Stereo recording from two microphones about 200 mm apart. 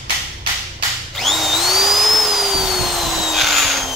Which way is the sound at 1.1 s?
Centre (ahead or behind).